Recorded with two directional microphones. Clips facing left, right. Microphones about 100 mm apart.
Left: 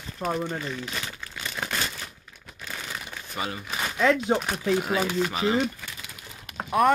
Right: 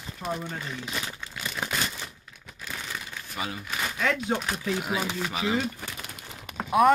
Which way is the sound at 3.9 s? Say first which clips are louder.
Left 6 dB; 20° left (ahead or behind).